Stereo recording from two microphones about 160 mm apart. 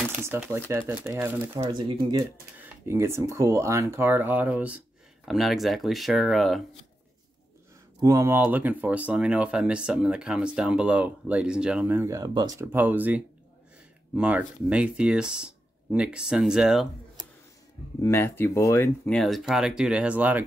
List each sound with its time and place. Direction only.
0.1 s speech: 10° right (ahead or behind)
1.7 s speech: 30° right (ahead or behind)
2.6 s speech: 15° right (ahead or behind); by 6.6 s centre (ahead or behind)
8.0 s speech: 20° right (ahead or behind)
12.7 s speech: 10° right (ahead or behind)
18.0 s speech: 15° left (ahead or behind); by 20.4 s 10° right (ahead or behind)